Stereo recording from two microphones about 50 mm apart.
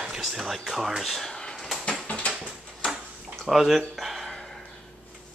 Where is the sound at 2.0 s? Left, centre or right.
Left.